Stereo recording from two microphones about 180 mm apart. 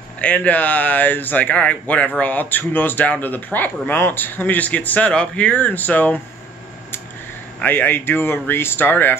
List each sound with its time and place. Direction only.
0.2 s speech: 10° left (ahead or behind)
7.6 s speech: 10° left (ahead or behind)